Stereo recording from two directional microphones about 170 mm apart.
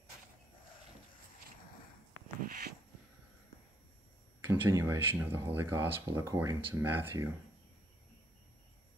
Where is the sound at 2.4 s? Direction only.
55° right (ahead or behind).